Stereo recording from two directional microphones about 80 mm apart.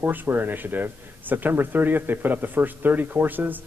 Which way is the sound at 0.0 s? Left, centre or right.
Right.